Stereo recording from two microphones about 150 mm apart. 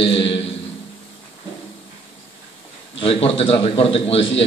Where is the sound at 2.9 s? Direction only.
40° left (ahead or behind).